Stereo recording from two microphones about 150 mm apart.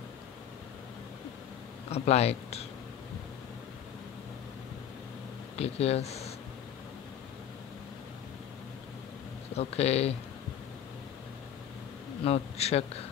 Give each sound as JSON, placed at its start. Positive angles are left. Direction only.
{"t": 1.9, "sound": "speech", "side_deg": 45}
{"t": 5.6, "sound": "speech", "side_deg": 45}
{"t": 9.6, "sound": "speech", "side_deg": 45}
{"t": 12.2, "sound": "speech", "side_deg": 45}